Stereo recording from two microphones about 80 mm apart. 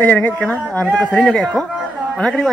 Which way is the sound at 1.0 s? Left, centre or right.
Centre.